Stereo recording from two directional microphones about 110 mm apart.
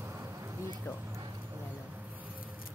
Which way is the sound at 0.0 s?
25° right (ahead or behind).